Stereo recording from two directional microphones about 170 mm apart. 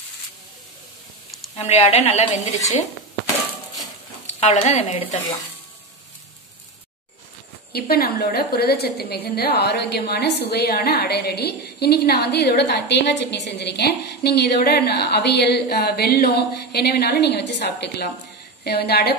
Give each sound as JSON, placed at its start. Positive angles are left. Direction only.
{"t": 1.6, "sound": "a woman's voice", "side_deg": 40}
{"t": 4.3, "sound": "speech", "side_deg": 40}
{"t": 7.7, "sound": "a woman's voice", "side_deg": 65}